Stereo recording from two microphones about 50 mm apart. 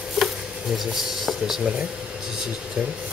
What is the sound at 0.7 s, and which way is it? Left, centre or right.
Speech, centre.